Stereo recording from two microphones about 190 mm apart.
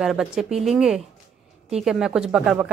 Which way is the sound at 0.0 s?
5° right (ahead or behind).